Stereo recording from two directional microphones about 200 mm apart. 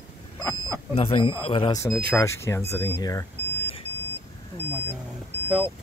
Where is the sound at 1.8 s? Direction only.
15° left (ahead or behind).